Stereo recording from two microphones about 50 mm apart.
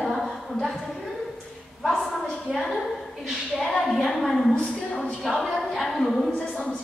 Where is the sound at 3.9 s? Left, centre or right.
Centre.